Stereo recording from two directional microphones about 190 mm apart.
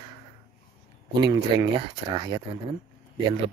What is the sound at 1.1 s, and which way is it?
Speech, 20° right (ahead or behind).